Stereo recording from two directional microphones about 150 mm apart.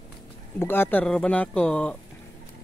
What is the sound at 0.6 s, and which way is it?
Speech, 15° left (ahead or behind).